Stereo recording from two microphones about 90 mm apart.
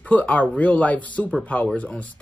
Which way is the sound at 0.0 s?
15° left (ahead or behind).